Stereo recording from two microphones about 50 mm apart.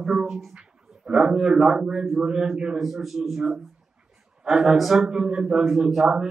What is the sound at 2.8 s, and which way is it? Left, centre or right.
Speech, centre.